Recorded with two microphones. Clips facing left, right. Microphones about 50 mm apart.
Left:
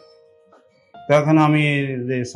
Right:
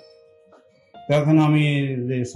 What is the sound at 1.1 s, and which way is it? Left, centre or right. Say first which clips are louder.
Speech: left 3 dB; left.